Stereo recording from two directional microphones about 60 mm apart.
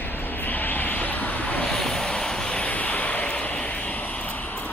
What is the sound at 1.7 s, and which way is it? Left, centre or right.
Vehicle, centre.